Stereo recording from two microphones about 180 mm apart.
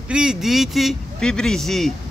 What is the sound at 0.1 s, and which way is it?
Speech, 5° right (ahead or behind).